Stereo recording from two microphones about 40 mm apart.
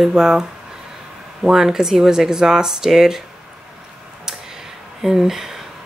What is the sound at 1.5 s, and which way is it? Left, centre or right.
Speech, centre.